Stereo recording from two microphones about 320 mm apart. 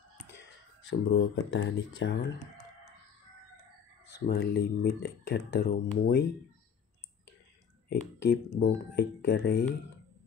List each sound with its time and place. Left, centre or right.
0.4 s speech: left
4.3 s speech: left
7.9 s speech: left